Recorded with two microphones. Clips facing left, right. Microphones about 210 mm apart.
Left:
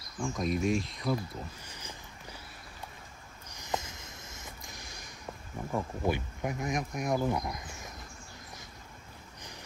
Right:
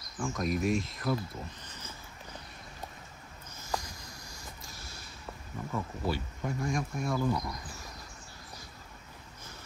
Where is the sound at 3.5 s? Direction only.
20° left (ahead or behind).